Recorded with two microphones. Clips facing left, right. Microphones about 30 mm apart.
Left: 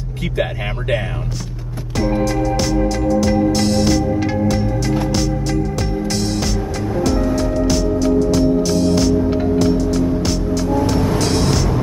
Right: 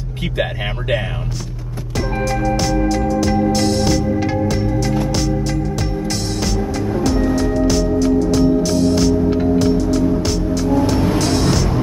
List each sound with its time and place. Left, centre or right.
0.2 s speech: centre
4.5 s music: centre
7.0 s music: centre
10.2 s vehicle: centre